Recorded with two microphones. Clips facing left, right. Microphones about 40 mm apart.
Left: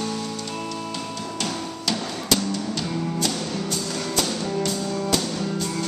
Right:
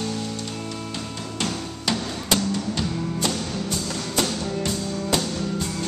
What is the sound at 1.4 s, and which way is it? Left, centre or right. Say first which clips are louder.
Music: right 2 dB; centre.